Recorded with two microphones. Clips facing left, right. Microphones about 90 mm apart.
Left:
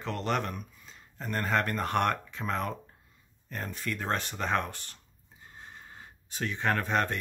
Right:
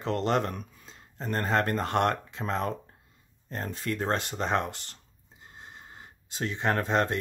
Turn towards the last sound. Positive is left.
turn(degrees=-25)  # may be behind; listen again after turning